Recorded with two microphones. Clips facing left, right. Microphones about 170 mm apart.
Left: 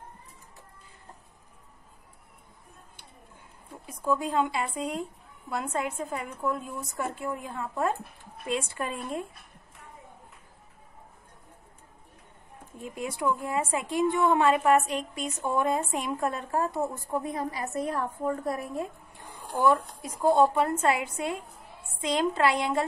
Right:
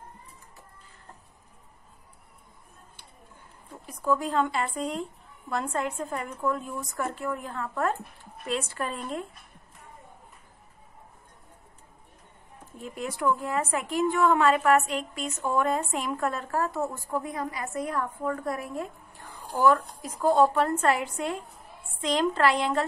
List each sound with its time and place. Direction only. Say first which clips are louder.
4.0 s a woman's voice: right 1 dB; 15° left (ahead or behind)
12.8 s a woman's voice: right 1 dB; 15° left (ahead or behind)
13.7 s a woman's voice: even; 25° left (ahead or behind)